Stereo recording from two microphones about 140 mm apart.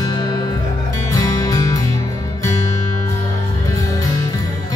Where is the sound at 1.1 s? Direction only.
25° left (ahead or behind).